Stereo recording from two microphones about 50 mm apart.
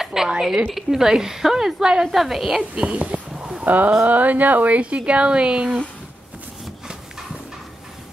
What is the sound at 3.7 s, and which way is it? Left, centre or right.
Speech, right.